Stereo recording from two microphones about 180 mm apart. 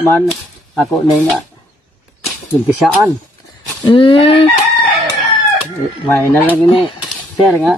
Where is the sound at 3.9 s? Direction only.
30° left (ahead or behind).